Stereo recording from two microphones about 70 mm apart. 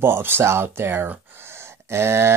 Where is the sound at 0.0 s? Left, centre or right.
Right.